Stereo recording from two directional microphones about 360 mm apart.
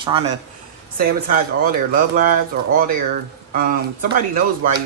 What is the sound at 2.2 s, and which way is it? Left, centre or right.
Speech, right.